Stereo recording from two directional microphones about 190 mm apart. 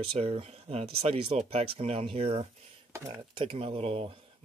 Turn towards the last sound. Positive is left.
turn(degrees=-30)  # may be behind; listen again after turning